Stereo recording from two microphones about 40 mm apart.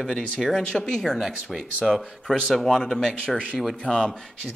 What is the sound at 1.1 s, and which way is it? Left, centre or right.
Speech, centre.